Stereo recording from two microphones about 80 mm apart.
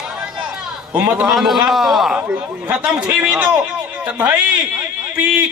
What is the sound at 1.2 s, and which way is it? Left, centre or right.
Speech, centre.